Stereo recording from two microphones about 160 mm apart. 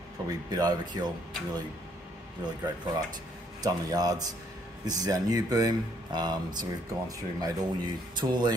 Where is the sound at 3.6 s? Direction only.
25° right (ahead or behind).